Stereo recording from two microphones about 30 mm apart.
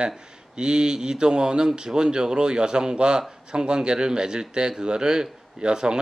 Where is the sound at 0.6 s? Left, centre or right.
Right.